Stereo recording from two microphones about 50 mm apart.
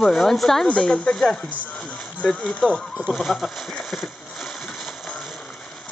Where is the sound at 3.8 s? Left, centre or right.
Centre.